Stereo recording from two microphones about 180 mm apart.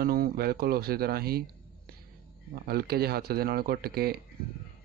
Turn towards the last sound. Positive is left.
turn(degrees=-60)  # may be behind; listen again after turning